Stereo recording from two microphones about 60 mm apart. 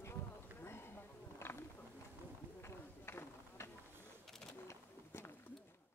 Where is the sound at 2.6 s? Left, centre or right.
Left.